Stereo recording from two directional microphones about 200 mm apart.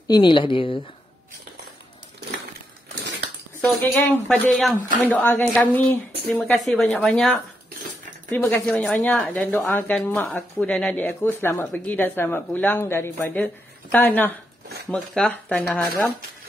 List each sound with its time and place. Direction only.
0.1 s speech: 25° left (ahead or behind)
3.6 s speech: centre (ahead or behind)
8.3 s speech: 15° left (ahead or behind)